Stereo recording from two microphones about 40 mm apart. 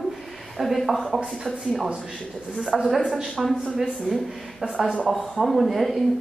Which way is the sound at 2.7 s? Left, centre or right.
Centre.